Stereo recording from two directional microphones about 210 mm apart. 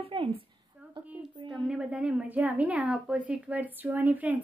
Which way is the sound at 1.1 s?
Centre (ahead or behind).